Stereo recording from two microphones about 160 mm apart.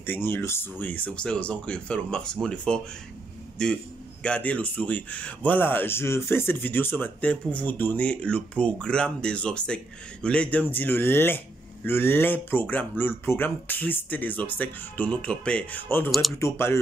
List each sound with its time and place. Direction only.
0.0 s a man's voice: 15° left (ahead or behind)
16.1 s speech: centre (ahead or behind)
16.3 s a man's voice: 15° left (ahead or behind)